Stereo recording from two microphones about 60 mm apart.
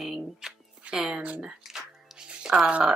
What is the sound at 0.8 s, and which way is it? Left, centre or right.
Speech, centre.